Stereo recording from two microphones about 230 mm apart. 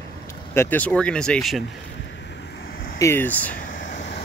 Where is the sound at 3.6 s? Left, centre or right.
Left.